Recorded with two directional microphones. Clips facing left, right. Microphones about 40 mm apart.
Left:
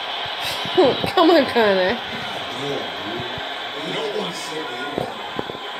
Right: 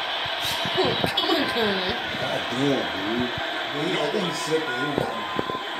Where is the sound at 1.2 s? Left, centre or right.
Left.